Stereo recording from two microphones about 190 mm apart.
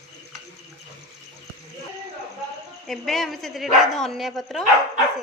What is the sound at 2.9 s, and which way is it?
A woman's voice, centre (ahead or behind).